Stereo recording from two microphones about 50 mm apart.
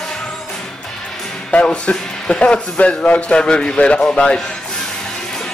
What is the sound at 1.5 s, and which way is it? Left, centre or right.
A man's voice, left.